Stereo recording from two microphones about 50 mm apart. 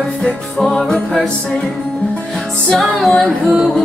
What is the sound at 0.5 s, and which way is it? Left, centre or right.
Music, centre.